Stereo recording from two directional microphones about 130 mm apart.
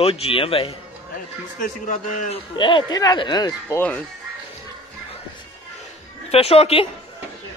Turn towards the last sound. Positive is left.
turn(degrees=50)  # may be behind; listen again after turning